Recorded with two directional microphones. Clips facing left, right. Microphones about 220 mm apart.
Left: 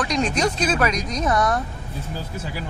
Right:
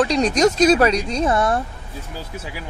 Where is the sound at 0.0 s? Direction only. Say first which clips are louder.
Right 6 dB; 35° right (ahead or behind).